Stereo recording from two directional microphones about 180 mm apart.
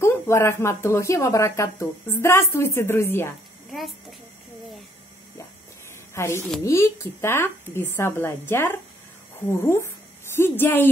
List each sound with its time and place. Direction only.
0.0 s speech: 15° left (ahead or behind)
6.1 s speech: 15° left (ahead or behind)